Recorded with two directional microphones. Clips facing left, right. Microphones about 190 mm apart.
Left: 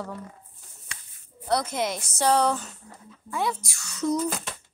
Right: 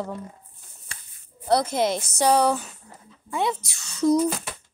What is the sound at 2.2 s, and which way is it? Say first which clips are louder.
Speech: right 2 dB; 15° right (ahead or behind).